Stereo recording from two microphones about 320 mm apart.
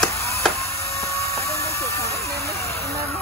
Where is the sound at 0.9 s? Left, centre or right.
Centre.